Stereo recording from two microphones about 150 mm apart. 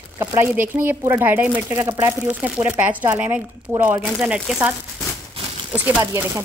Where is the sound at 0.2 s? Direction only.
15° right (ahead or behind).